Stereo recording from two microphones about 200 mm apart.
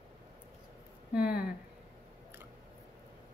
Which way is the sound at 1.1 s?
50° left (ahead or behind).